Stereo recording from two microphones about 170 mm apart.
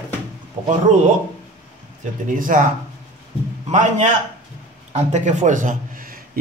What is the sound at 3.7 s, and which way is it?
A man's voice, 45° right (ahead or behind).